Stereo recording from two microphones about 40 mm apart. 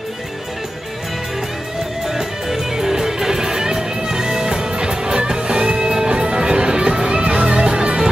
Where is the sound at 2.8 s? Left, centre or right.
Centre.